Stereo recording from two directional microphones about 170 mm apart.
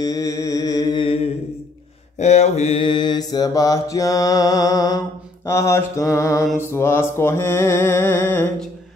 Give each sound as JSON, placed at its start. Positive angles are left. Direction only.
{"t": 0.0, "sound": "music", "side_deg": 20}
{"t": 2.1, "sound": "mantra", "side_deg": 40}
{"t": 6.6, "sound": "music", "side_deg": 15}